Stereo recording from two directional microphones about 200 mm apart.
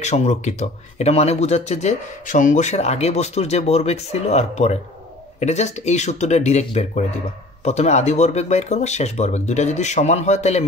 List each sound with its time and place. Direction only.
0.0 s speech: 35° left (ahead or behind)